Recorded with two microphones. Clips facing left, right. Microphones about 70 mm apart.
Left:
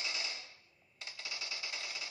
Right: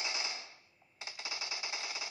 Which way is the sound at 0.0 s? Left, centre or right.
Right.